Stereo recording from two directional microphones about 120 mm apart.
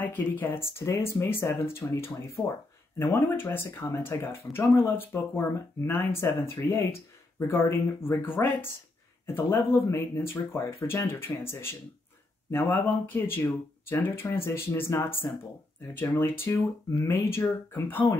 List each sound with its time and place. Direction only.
0.0 s speech: 15° left (ahead or behind)